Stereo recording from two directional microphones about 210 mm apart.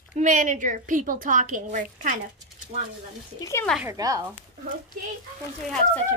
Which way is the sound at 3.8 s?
15° right (ahead or behind).